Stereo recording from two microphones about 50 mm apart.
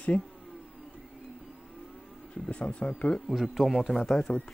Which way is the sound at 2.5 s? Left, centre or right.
Left.